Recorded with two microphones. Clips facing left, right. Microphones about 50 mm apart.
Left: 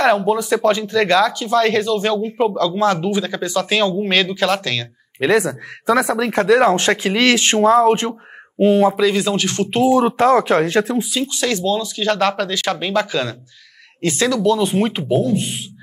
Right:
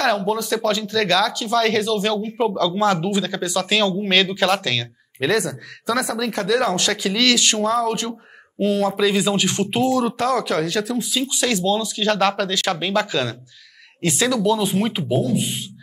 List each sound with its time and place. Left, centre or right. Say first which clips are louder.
0.0 s speech: left 4 dB; centre
5.2 s speech: left 4 dB; left
9.0 s speech: left 2 dB; centre
9.8 s speech: left 9 dB; left
11.1 s speech: left 1 dB; centre